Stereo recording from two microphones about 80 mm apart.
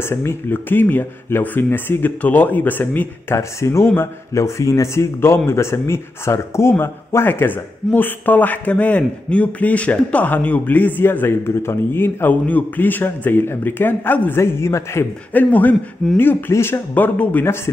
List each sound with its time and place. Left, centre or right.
0.0 s speech: left
3.3 s speech: left
14.4 s speech: left
15.3 s speech: left
16.9 s speech: centre